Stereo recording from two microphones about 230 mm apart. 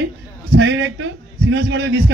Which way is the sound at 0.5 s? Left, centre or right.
Right.